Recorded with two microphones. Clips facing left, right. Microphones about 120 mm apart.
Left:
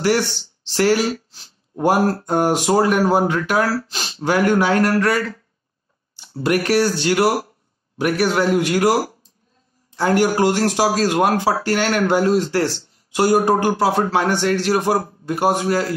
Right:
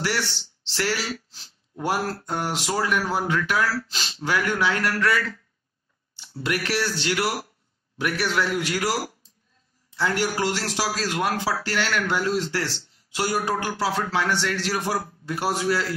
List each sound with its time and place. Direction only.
0.0 s speech: 45° left (ahead or behind)